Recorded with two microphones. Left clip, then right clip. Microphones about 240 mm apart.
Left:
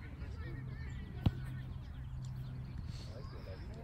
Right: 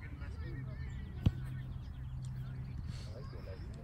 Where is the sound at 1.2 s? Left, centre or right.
Left.